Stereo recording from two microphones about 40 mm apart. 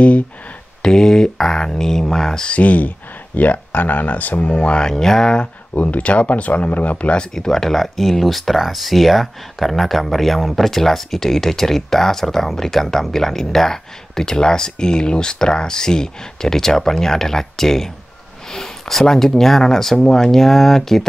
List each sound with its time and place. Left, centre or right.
0.8 s speech: centre
2.4 s speech: left
4.5 s speech: left
5.8 s speech: left
7.3 s speech: centre